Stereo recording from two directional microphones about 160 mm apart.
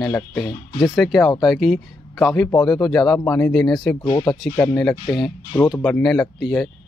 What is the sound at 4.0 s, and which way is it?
Speech, 25° left (ahead or behind).